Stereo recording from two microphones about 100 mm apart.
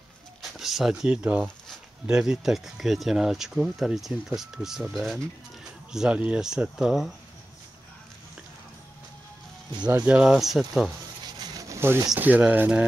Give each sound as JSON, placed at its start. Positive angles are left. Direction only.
{"t": 0.4, "sound": "speech", "side_deg": -5}
{"t": 10.0, "sound": "speech", "side_deg": -10}
{"t": 11.2, "sound": "a sound", "side_deg": -45}
{"t": 12.2, "sound": "speech", "side_deg": -15}